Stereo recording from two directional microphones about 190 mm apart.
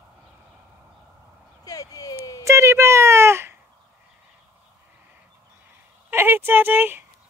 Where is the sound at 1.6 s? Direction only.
20° left (ahead or behind).